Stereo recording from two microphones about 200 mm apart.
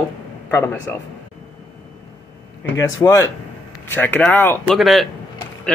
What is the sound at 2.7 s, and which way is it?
Speech, 15° left (ahead or behind).